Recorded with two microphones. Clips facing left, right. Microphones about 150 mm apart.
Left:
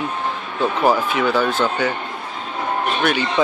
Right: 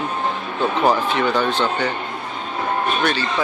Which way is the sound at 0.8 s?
5° left (ahead or behind).